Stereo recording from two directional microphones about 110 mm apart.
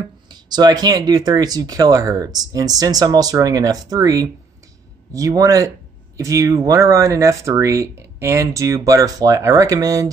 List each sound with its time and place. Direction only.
0.3 s speech: 40° right (ahead or behind)